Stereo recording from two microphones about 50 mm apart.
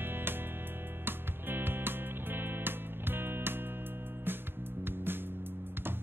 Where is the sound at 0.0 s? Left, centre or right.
Right.